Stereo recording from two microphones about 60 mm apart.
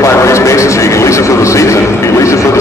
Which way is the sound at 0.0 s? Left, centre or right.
Left.